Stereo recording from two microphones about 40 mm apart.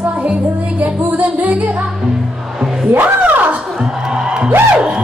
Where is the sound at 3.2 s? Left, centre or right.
Right.